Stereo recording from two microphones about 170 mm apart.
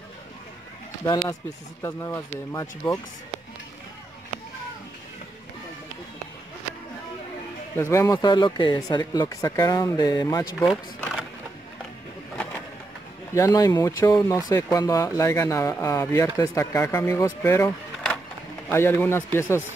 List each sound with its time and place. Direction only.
1.0 s speech: 15° left (ahead or behind)
7.7 s speech: 15° left (ahead or behind)
11.0 s a sound: centre (ahead or behind)
13.3 s speech: 20° left (ahead or behind)
17.9 s a sound: 5° left (ahead or behind)
18.7 s speech: 15° left (ahead or behind)